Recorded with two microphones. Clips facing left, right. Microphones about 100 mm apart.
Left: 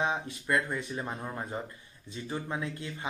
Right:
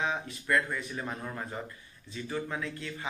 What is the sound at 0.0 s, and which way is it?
Speech, 25° left (ahead or behind).